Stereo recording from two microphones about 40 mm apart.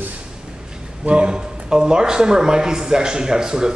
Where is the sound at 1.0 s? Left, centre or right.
Right.